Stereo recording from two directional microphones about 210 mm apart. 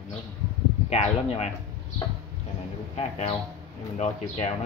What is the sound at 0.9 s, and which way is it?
Speech, 30° left (ahead or behind).